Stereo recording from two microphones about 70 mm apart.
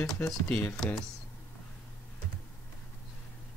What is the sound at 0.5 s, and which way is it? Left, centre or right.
Speech, left.